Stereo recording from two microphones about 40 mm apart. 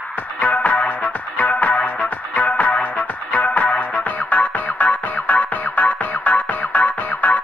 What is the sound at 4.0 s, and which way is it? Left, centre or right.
Music, left.